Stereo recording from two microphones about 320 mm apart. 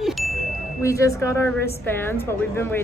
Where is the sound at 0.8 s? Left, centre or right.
Centre.